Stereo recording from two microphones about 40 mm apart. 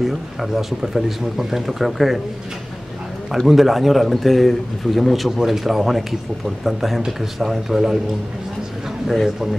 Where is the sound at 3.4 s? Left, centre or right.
Centre.